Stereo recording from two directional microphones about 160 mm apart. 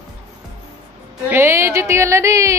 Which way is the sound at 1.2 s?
15° right (ahead or behind).